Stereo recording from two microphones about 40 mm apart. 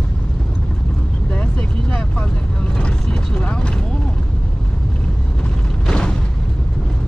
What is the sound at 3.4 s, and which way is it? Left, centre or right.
Vehicle, left.